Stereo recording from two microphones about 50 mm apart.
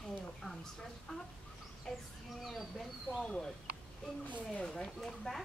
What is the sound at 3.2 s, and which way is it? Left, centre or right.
Speech, centre.